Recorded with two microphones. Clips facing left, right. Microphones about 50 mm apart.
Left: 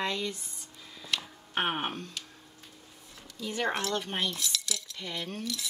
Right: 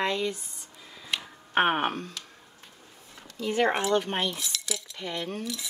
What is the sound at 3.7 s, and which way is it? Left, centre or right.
Speech, right.